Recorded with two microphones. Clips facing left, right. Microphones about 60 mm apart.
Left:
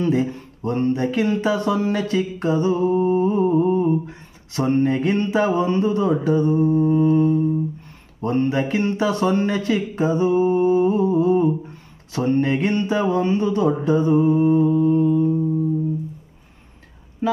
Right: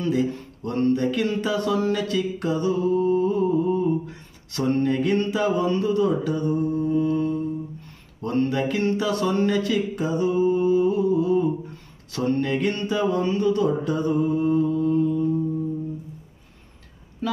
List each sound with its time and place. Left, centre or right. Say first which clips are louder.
0.0 s speech: left 3 dB; left
17.2 s speech: left 5 dB; left